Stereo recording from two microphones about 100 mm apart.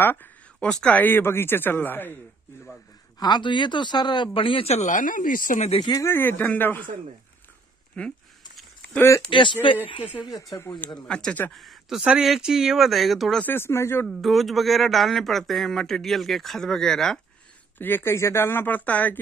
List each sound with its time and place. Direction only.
0.0 s a sound: 20° left (ahead or behind)
0.7 s speech: 10° left (ahead or behind)
3.2 s speech: 45° left (ahead or behind); by 4.8 s 80° left
5.8 s speech: 40° left (ahead or behind)
6.0 s speech: 20° left (ahead or behind)
8.0 s speech: 15° left (ahead or behind)
8.9 s speech: 25° left (ahead or behind)
9.3 s speech: 55° left (ahead or behind)
10.2 s speech: 35° left (ahead or behind)
11.0 s speech: 10° left (ahead or behind)
11.5 s speech: centre (ahead or behind)
13.4 s speech: 20° left (ahead or behind)
14.0 s speech: centre (ahead or behind)
17.7 s speech: 20° left (ahead or behind)